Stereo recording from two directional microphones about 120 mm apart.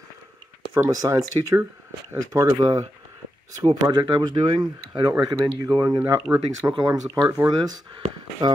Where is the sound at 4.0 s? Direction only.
40° right (ahead or behind).